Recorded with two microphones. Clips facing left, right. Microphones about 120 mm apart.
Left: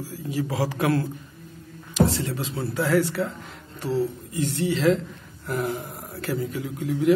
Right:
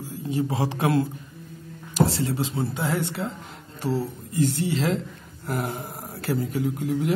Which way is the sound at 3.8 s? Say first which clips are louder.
Left 2 dB; 35° right (ahead or behind).